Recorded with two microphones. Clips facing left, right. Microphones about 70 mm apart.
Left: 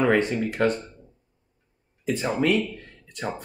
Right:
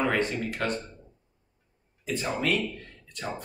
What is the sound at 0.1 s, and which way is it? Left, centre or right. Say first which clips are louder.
Speech: left 5 dB; left.